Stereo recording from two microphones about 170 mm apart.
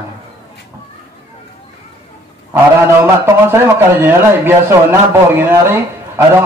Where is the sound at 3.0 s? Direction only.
15° right (ahead or behind).